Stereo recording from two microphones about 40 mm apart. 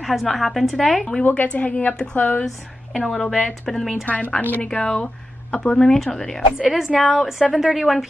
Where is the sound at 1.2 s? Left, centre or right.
Left.